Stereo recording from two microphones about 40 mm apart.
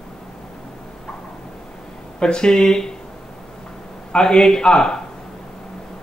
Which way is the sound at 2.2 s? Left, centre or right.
Left.